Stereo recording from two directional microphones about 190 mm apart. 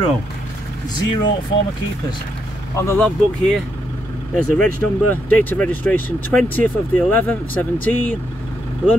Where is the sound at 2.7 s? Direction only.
15° left (ahead or behind).